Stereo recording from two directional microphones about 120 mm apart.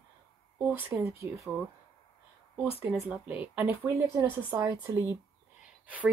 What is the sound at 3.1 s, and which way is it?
Speech, 10° right (ahead or behind).